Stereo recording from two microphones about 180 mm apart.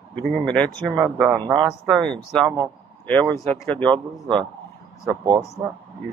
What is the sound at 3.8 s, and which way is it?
A man's voice, 25° right (ahead or behind).